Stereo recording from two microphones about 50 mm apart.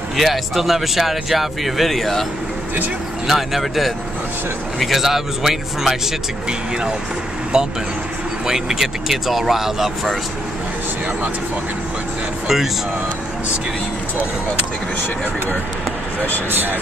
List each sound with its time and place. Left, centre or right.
0.2 s speech: centre
3.3 s speech: centre
7.5 s speech: centre